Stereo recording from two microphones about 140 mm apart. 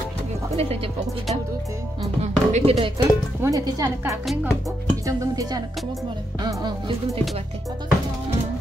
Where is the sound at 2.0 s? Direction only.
50° right (ahead or behind).